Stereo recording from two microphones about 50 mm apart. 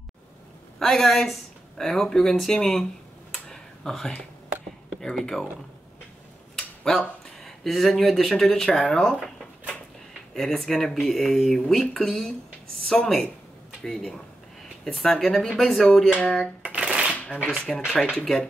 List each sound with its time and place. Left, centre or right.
0.7 s speech: centre
5.2 s speech: centre
6.5 s speech: centre
10.3 s speech: centre
14.9 s speech: centre
16.2 s a sound: left
16.6 s shuffling cards: right
17.5 s speech: centre